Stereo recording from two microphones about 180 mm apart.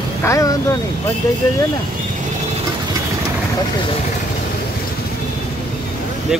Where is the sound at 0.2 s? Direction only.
15° left (ahead or behind).